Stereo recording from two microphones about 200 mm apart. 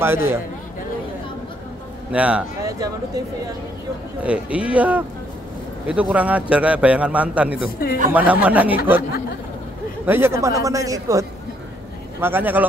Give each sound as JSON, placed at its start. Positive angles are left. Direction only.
{"t": 0.0, "sound": "a man's voice", "side_deg": -10}
{"t": 2.1, "sound": "a man's voice", "side_deg": -5}
{"t": 4.2, "sound": "a man's voice", "side_deg": -5}
{"t": 10.0, "sound": "a man's voice", "side_deg": -10}